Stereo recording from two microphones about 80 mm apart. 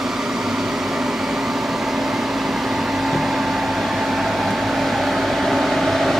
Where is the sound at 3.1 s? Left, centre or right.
Centre.